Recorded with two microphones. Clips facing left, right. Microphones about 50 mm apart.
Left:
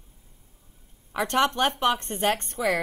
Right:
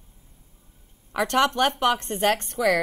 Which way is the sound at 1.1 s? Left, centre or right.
Right.